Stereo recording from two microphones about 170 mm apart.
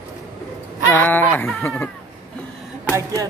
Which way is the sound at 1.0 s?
10° left (ahead or behind).